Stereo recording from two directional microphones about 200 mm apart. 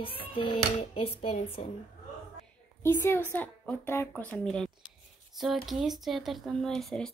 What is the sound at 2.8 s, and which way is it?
A woman's voice, 10° left (ahead or behind).